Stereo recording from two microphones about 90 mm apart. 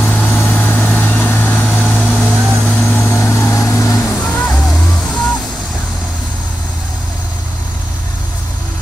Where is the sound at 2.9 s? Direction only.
25° left (ahead or behind).